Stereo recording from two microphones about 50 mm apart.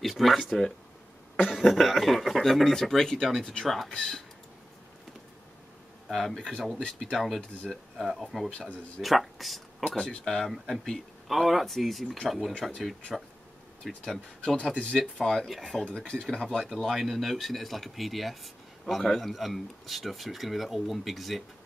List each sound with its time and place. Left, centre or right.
0.0 s speech: centre
1.5 s speech: centre
6.0 s speech: centre
14.0 s speech: centre
14.8 s speech: centre
15.4 s speech: centre
16.0 s speech: centre